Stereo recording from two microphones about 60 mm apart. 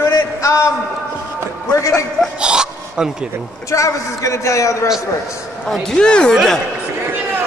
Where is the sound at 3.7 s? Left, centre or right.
Left.